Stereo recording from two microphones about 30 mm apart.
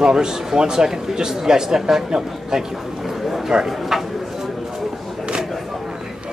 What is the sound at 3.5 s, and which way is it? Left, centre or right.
Speech, right.